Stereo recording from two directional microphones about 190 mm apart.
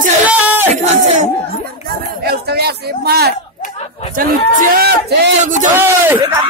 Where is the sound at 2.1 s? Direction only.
55° right (ahead or behind).